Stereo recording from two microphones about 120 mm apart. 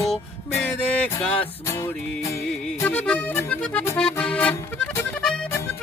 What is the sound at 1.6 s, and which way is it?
Music, 25° left (ahead or behind).